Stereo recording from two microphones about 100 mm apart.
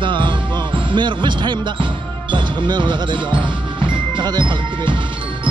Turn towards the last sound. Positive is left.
turn(degrees=-55)  # may be behind; listen again after turning